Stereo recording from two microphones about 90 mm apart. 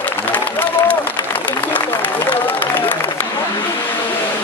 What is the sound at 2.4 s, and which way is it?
Applause, 20° left (ahead or behind).